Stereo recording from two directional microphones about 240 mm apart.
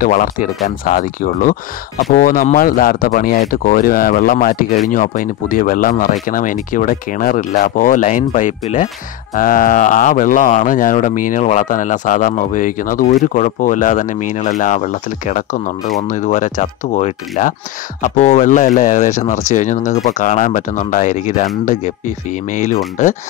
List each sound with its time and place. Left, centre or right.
0.0 s speech: left